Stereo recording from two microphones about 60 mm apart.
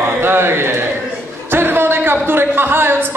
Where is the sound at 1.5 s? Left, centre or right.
Right.